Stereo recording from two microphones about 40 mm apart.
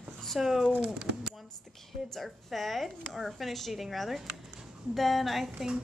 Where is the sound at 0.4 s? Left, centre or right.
Centre.